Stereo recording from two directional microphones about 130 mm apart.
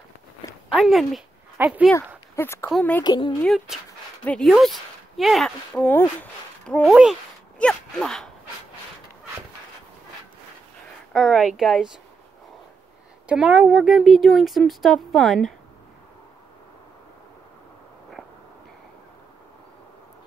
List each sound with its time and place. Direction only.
0.7 s speech: centre (ahead or behind)
2.3 s speech: 20° left (ahead or behind)
3.0 s speech: 35° left (ahead or behind)
3.4 s speech: centre (ahead or behind)
4.2 s speech: 10° left (ahead or behind)
6.9 s speech: 5° right (ahead or behind)
7.5 s speech: 5° left (ahead or behind)
11.1 s speech: centre (ahead or behind)
13.3 s speech: 10° right (ahead or behind)